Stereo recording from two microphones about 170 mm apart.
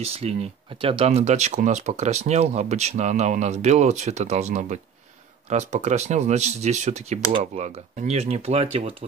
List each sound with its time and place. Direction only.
0.0 s speech: 35° right (ahead or behind)